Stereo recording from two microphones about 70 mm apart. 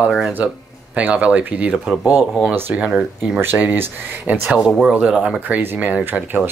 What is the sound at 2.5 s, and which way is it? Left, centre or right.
Speech, right.